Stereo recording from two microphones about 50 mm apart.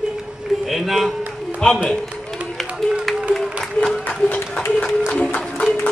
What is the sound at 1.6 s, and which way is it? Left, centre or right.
Speech, centre.